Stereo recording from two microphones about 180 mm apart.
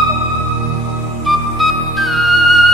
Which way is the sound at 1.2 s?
Centre (ahead or behind).